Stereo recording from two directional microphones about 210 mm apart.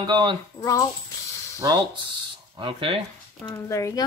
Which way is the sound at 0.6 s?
15° left (ahead or behind).